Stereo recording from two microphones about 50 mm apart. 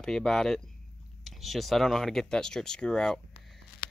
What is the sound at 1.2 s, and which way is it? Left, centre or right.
Speech, centre.